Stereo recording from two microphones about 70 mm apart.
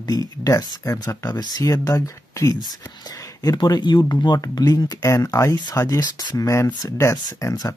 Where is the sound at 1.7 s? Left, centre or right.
Left.